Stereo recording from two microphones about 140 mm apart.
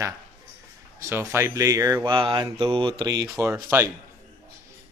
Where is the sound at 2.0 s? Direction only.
35° right (ahead or behind); by 3.9 s 15° right (ahead or behind).